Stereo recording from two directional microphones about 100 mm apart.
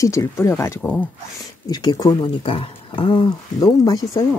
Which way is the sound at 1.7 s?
40° left (ahead or behind).